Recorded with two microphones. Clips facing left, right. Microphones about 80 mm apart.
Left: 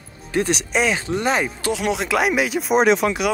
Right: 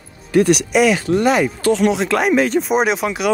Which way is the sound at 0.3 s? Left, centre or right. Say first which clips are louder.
Right 7 dB; left.